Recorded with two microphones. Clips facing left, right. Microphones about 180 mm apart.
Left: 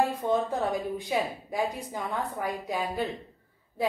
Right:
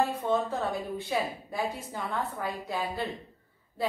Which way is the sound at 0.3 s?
15° left (ahead or behind).